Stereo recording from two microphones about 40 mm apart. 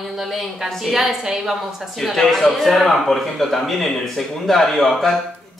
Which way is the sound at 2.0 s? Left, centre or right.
Centre.